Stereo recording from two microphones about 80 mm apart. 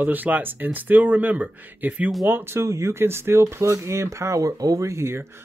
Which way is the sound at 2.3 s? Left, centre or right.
Right.